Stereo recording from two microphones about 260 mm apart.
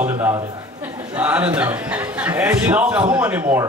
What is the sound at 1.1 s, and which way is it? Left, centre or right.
A man's voice, centre.